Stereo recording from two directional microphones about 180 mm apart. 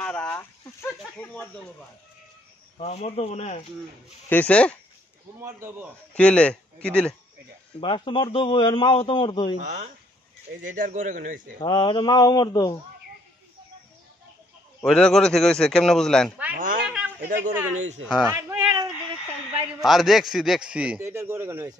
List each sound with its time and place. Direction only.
0.0 s speech: 5° left (ahead or behind)
2.8 s speech: 35° left (ahead or behind)
4.3 s speech: 10° left (ahead or behind)
5.4 s a man's voice: 15° right (ahead or behind)
6.1 s speech: 5° left (ahead or behind)
7.8 s a man's voice: 25° left (ahead or behind)
9.6 s speech: 40° right (ahead or behind)
11.6 s a man's voice: 25° left (ahead or behind)
14.8 s speech: 5° left (ahead or behind)
16.5 s speech: 50° right (ahead or behind)
16.9 s a sound: 5° right (ahead or behind)
17.4 s a man's voice: 10° right (ahead or behind)
19.8 s a man's voice: centre (ahead or behind)